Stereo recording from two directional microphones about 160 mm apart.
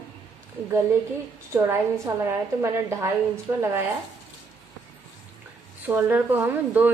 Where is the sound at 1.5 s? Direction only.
15° right (ahead or behind).